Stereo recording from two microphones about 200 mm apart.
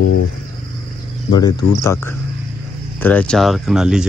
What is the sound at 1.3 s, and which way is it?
Speech, 20° left (ahead or behind).